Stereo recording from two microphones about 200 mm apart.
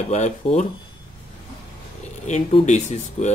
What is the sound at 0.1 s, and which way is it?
Speech, 35° left (ahead or behind).